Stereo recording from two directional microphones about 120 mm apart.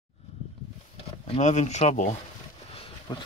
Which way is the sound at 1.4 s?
80° left.